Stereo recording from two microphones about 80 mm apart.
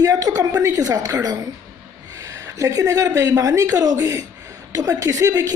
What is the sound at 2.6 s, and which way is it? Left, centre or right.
Speech, right.